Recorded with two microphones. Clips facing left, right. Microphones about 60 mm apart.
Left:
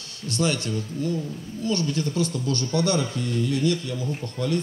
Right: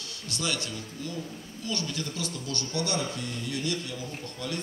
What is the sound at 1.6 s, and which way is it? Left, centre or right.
A man's voice, left.